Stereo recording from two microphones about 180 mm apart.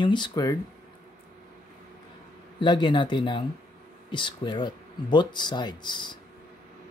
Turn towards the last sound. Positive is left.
turn(degrees=25)  # may be behind; listen again after turning